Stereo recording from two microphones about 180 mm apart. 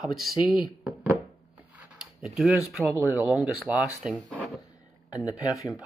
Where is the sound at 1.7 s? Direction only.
5° right (ahead or behind).